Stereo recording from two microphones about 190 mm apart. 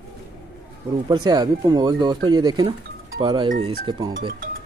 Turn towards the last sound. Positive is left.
turn(degrees=-50)  # may be behind; listen again after turning